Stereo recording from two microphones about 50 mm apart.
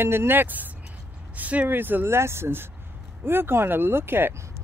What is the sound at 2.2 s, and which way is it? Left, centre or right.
Speech, right.